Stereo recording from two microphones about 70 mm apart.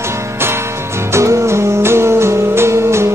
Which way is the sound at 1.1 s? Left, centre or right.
Right.